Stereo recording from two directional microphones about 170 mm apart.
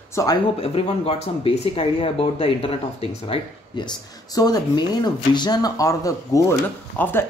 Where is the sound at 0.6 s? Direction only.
35° left (ahead or behind).